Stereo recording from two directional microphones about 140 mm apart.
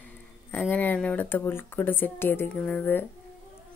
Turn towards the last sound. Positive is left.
turn(degrees=15)  # may be behind; listen again after turning